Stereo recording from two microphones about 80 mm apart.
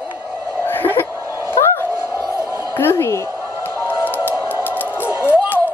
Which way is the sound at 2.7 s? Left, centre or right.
Left.